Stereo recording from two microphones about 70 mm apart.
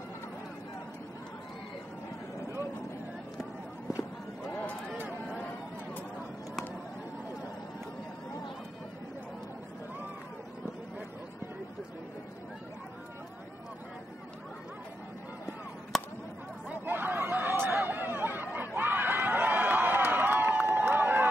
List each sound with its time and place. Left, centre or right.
4.6 s a sound: left
16.8 s chatter: right
18.8 s crowd: right